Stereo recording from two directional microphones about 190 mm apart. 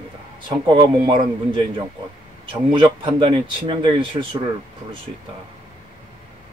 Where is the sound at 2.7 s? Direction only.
25° right (ahead or behind).